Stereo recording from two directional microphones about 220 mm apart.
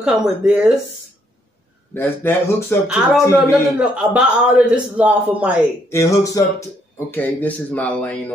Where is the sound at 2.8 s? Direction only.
5° right (ahead or behind).